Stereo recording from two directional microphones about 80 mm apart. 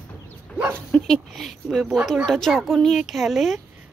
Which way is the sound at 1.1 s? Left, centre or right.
Centre.